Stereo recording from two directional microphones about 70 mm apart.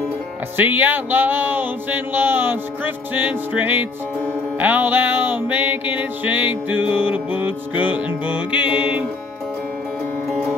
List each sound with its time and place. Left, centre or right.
0.6 s music: right